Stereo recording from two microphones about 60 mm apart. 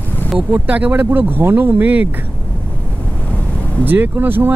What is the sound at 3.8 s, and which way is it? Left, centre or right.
Speech, right.